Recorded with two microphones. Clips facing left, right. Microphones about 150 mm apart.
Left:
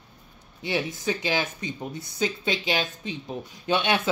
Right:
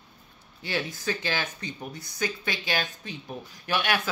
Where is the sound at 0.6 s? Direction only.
20° left (ahead or behind).